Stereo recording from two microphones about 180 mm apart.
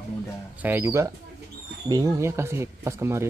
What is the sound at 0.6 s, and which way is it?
Speech, 10° right (ahead or behind).